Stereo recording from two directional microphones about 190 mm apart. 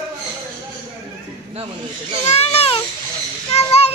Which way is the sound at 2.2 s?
35° left (ahead or behind).